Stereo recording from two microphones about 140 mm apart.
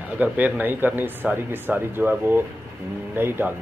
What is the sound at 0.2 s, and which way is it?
Speech, 10° right (ahead or behind).